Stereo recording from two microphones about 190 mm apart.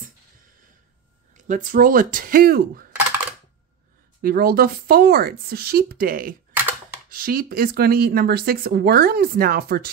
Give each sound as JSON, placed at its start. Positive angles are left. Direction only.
{"t": 1.3, "sound": "speech", "side_deg": -45}
{"t": 3.0, "sound": "a sound", "side_deg": -10}
{"t": 4.2, "sound": "speech", "side_deg": -50}